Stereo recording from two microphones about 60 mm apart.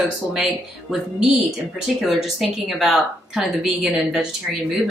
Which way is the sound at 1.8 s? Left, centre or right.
Centre.